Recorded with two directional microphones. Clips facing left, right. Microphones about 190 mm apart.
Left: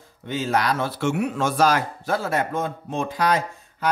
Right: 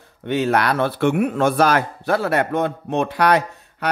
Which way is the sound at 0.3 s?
65° right (ahead or behind).